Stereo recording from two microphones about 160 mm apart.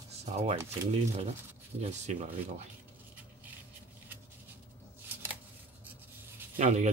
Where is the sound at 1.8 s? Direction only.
40° right (ahead or behind).